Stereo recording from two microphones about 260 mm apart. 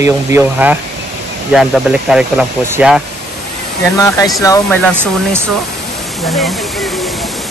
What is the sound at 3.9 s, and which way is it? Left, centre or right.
Speech, centre.